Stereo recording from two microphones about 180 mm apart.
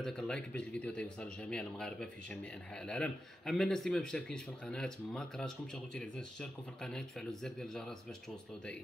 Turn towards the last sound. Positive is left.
turn(degrees=5)  # may be behind; listen again after turning